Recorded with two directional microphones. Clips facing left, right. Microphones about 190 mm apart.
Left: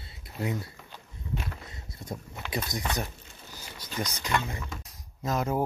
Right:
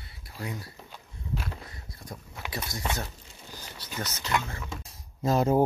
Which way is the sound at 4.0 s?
15° left (ahead or behind).